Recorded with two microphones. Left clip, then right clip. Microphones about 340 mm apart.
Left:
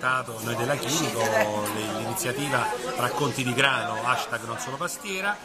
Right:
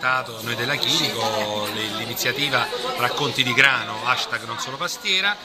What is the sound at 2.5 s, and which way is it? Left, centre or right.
A man's voice, centre.